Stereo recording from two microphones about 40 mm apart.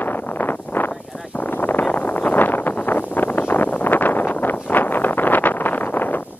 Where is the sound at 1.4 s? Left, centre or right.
Left.